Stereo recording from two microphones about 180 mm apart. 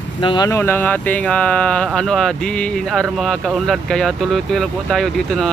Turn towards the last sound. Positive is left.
turn(degrees=0)  # may be behind; listen again after turning